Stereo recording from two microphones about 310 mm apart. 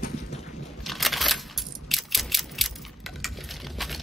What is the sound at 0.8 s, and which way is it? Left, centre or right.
Coin, centre.